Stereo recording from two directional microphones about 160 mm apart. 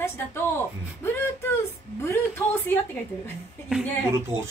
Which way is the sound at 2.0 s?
15° left (ahead or behind).